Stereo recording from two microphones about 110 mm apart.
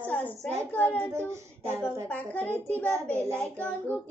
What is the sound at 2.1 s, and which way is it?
Child singing, 15° left (ahead or behind).